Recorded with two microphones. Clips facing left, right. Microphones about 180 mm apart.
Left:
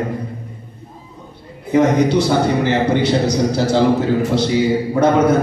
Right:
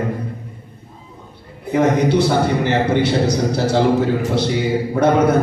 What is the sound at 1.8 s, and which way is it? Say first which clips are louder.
A man's voice: left 1 dB; 55° right (ahead or behind).